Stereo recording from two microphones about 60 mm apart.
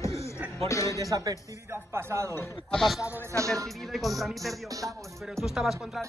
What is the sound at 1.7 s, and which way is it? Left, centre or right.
Speech, right.